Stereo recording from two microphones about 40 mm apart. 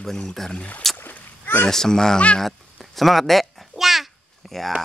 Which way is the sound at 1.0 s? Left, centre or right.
Left.